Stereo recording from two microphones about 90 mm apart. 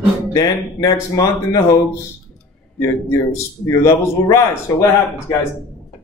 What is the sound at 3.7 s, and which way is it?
Speech, 35° left (ahead or behind).